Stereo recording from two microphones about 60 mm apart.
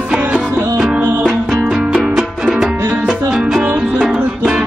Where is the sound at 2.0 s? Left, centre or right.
Centre.